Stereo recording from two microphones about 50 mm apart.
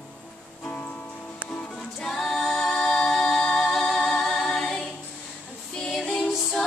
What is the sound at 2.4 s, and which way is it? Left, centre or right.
Music, centre.